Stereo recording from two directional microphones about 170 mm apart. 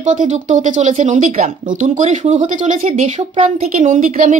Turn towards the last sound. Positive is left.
turn(degrees=-45)  # may be behind; listen again after turning